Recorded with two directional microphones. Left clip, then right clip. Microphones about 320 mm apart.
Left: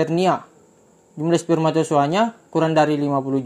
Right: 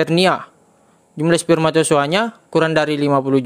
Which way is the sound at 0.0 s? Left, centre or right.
Right.